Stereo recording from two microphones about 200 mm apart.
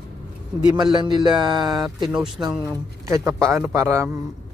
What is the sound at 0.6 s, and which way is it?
A man's voice, 20° right (ahead or behind).